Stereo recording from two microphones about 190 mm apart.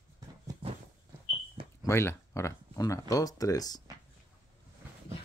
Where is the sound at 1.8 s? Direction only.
15° left (ahead or behind).